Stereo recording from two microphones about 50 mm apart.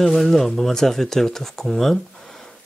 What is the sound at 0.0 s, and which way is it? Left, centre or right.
Speech, centre.